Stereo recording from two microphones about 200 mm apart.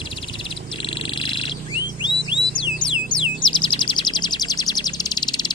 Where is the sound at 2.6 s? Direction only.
25° left (ahead or behind).